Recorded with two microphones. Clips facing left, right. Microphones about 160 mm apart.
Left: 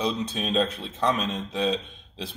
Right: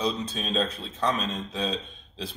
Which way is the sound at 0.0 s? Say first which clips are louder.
Left 2 dB; 10° left (ahead or behind).